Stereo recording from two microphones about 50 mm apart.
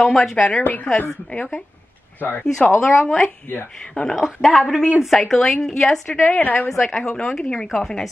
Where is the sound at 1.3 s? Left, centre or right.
Left.